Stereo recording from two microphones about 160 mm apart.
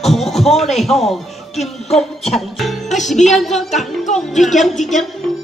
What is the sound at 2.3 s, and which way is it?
Speech, centre (ahead or behind).